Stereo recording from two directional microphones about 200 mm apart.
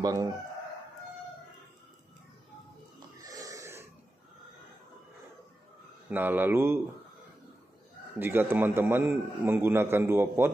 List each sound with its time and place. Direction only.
0.0 s a man's voice: 20° right (ahead or behind)
3.2 s wheeze: 15° right (ahead or behind)
6.0 s a man's voice: 10° right (ahead or behind)
8.2 s a man's voice: 10° right (ahead or behind)